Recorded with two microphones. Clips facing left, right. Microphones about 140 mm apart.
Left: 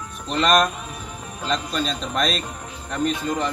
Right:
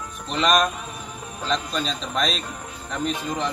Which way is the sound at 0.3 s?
Centre (ahead or behind).